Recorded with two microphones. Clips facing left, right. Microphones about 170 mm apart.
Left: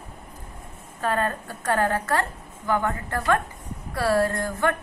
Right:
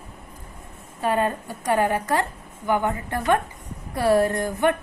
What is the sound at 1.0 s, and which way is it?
A woman's voice, 15° right (ahead or behind).